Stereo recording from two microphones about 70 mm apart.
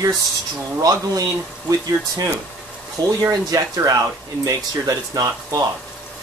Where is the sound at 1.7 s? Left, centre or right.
Right.